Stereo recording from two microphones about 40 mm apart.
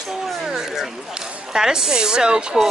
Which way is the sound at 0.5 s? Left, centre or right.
Centre.